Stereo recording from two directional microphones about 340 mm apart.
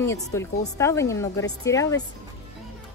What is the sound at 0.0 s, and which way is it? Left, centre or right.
Speech, centre.